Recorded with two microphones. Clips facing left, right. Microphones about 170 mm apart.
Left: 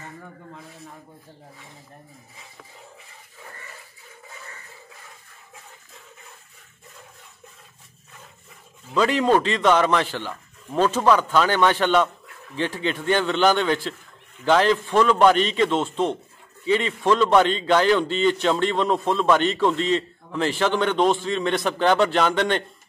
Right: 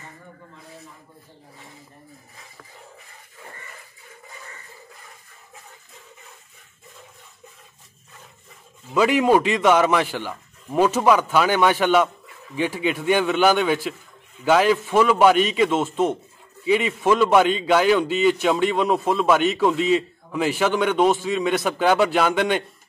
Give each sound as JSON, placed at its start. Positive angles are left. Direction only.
{"t": 8.9, "sound": "a man's voice", "side_deg": -10}